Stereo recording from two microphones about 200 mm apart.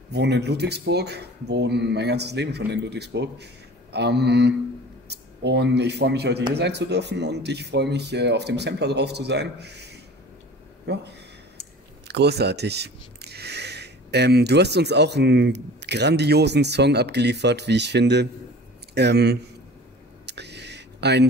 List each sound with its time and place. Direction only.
0.1 s a man's voice: 55° right (ahead or behind)
12.1 s speech: 55° right (ahead or behind)
20.2 s a sound: 60° right (ahead or behind)